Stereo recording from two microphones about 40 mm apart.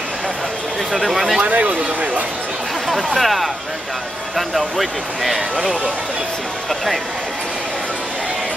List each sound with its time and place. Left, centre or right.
0.9 s speech: centre
1.4 s speech: right
2.9 s speech: centre